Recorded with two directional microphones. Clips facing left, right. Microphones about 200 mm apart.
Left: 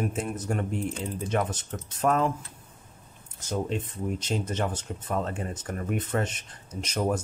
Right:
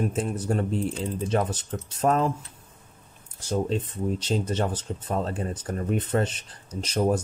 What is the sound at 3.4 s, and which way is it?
Speech, 30° right (ahead or behind).